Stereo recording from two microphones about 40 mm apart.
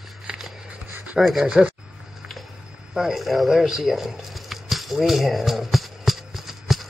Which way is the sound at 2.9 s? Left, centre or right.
Centre.